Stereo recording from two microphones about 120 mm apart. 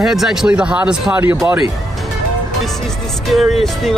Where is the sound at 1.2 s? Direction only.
20° right (ahead or behind).